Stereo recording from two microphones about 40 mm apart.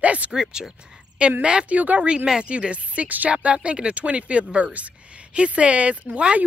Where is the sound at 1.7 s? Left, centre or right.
Right.